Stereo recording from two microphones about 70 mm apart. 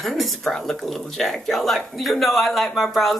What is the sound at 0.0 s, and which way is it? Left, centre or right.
A woman's voice, centre.